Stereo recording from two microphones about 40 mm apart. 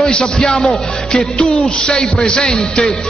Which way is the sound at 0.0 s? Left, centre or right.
Centre.